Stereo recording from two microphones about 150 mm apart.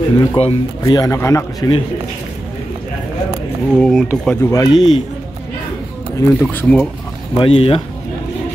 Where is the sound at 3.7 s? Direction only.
Centre (ahead or behind); by 4.9 s 25° left (ahead or behind).